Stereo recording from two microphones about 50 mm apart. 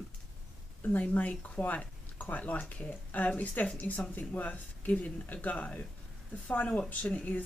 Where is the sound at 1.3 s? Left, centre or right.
Left.